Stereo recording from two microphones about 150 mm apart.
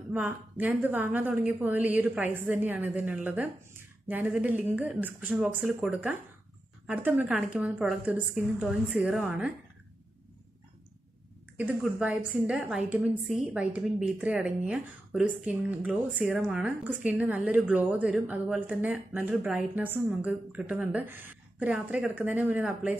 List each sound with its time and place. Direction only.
0.1 s a woman's voice: 10° right (ahead or behind)
11.5 s a woman's voice: 10° right (ahead or behind)